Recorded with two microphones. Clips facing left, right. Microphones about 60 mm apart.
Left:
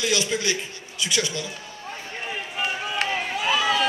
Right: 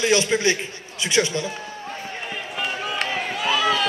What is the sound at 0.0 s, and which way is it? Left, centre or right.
A man's voice, right.